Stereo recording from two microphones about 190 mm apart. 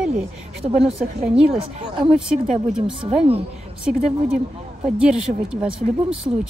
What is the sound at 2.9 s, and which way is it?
Speech, 30° right (ahead or behind).